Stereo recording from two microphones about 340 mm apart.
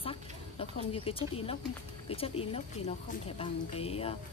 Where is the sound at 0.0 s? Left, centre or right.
Centre.